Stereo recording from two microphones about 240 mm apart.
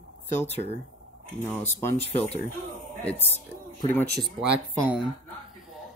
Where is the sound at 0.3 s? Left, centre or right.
Left.